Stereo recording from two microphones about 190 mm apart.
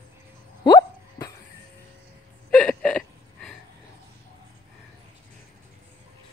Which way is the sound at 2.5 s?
5° left (ahead or behind).